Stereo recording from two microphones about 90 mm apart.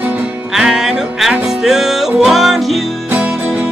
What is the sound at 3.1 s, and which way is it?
Music, 15° right (ahead or behind).